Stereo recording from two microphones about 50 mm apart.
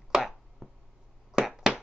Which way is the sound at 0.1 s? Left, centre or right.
Centre.